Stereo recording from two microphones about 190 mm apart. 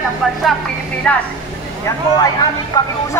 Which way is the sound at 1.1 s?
5° left (ahead or behind).